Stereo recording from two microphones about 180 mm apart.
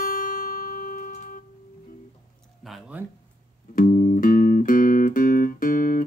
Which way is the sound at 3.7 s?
45° left (ahead or behind).